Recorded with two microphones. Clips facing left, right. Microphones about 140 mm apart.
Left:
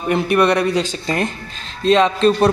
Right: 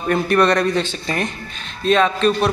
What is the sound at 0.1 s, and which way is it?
Speech, 10° left (ahead or behind).